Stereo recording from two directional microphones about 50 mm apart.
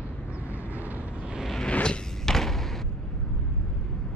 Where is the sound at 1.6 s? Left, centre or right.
Centre.